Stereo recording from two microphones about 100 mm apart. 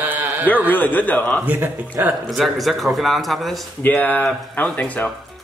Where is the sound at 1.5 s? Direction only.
20° right (ahead or behind).